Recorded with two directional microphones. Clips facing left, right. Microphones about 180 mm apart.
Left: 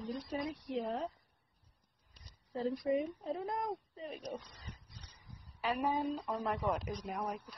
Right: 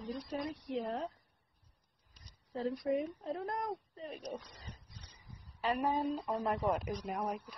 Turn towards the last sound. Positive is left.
turn(degrees=0)  # may be behind; listen again after turning